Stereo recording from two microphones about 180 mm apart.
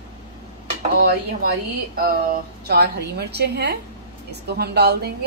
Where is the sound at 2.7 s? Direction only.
60° right (ahead or behind).